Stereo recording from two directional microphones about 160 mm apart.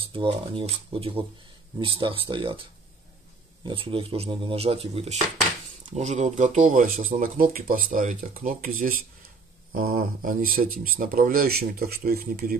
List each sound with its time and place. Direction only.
0.0 s speech: 35° right (ahead or behind); by 12.5 s 70° right (ahead or behind)